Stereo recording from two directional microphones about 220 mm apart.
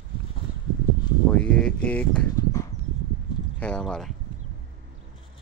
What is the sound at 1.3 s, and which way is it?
Speech, 5° left (ahead or behind).